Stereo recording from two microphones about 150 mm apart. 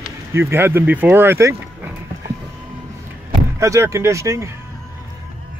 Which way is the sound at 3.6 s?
20° right (ahead or behind).